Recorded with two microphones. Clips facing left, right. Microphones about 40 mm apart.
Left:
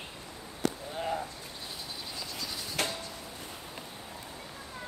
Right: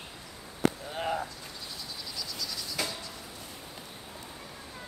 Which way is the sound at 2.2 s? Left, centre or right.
Left.